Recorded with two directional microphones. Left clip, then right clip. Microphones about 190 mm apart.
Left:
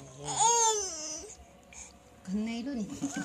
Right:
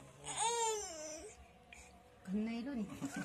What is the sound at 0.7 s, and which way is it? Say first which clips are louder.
Baby cry: left 9 dB; 20° left (ahead or behind).